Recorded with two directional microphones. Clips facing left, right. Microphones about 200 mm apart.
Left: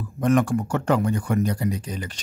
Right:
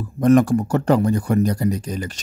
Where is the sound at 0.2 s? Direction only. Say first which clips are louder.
Right 6 dB; 40° right (ahead or behind).